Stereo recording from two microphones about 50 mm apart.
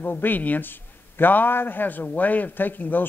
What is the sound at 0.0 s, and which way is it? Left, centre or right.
Speech, left.